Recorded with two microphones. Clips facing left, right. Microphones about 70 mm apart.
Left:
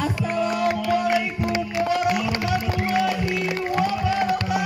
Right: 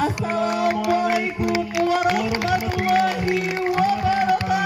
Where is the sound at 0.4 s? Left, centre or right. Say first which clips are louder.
Right 1 dB; right.